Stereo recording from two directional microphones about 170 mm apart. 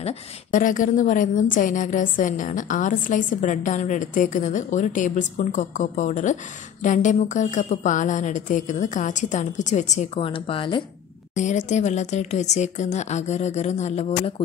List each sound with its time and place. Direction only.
0.0 s a woman's voice: 50° left (ahead or behind)
10.1 s a woman's voice: 30° left (ahead or behind)
11.3 s a woman's voice: 45° left (ahead or behind)